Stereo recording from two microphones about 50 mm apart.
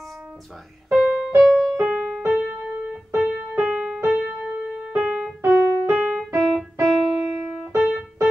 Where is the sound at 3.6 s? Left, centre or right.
Right.